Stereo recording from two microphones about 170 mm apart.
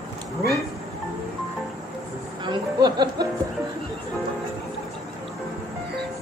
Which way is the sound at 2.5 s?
25° right (ahead or behind).